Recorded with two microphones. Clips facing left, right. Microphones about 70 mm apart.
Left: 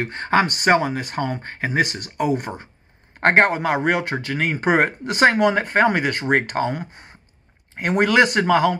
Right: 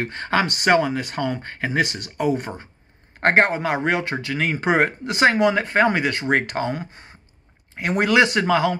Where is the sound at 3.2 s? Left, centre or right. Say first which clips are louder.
Left 1 dB; left.